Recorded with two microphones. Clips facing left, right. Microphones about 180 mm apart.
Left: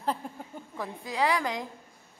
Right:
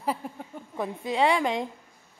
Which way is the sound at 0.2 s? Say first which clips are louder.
Right 3 dB; 5° right (ahead or behind).